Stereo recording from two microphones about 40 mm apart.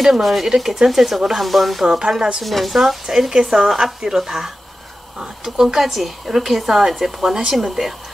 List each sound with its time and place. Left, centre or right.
0.0 s a woman's voice: centre
1.9 s a woman's voice: centre
2.4 s a woman's voice: centre